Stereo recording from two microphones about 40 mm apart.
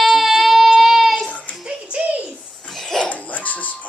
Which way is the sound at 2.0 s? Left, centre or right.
Right.